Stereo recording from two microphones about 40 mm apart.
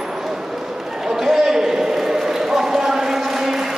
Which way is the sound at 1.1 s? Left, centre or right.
Centre.